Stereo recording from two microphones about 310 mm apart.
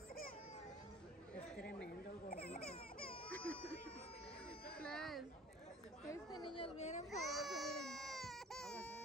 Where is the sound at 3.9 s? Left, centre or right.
Centre.